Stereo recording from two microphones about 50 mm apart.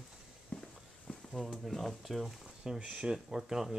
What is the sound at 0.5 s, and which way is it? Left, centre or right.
Walk, left.